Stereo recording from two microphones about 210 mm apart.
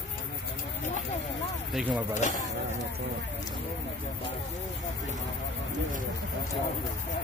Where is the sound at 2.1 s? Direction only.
35° left (ahead or behind).